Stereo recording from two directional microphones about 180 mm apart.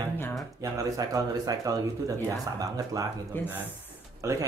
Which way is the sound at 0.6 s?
20° right (ahead or behind).